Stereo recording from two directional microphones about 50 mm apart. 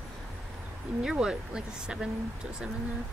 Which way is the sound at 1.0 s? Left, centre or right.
Centre.